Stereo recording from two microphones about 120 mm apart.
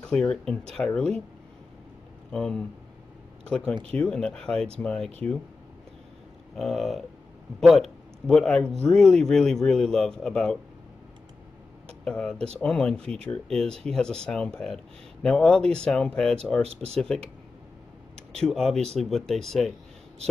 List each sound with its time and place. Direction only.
0.0 s speech: 10° left (ahead or behind)
2.3 s a man's voice: 5° left (ahead or behind)
3.7 s speech: 50° right (ahead or behind)
4.0 s a man's voice: 5° left (ahead or behind)
6.5 s a man's voice: centre (ahead or behind)
12.0 s a man's voice: 5° left (ahead or behind)